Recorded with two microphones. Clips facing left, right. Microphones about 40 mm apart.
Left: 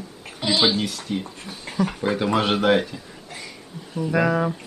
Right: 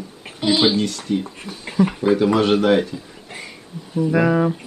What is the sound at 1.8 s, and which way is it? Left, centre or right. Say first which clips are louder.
Speech: right 6 dB; centre.